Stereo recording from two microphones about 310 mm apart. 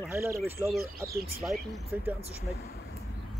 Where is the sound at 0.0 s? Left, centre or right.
Centre.